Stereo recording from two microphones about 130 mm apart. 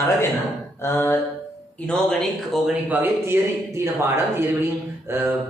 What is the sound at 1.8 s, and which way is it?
Speech, 5° left (ahead or behind).